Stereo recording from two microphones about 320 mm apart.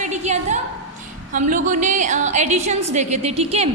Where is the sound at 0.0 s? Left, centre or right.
Right.